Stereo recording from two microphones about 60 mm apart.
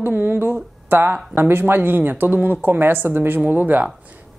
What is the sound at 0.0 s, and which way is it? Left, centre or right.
Speech, right.